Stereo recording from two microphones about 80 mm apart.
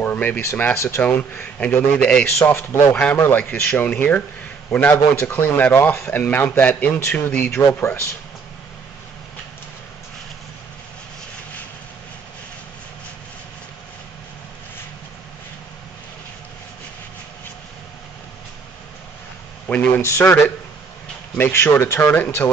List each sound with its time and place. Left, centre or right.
0.0 s a sound: left
0.4 s speech: left
2.3 s speech: left
2.9 s speech: centre
3.2 s speech: left
20.0 s speech: left
21.4 s speech: left
22.1 s speech: left